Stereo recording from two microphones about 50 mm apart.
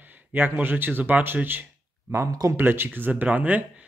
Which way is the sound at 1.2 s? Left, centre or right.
Right.